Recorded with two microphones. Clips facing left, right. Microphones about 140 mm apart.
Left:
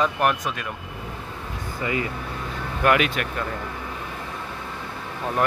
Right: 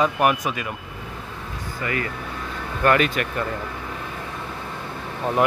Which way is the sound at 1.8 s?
20° left (ahead or behind).